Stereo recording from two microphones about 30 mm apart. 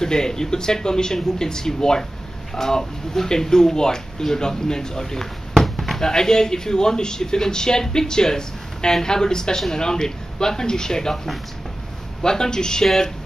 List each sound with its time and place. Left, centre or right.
0.0 s speech: left
12.2 s speech: left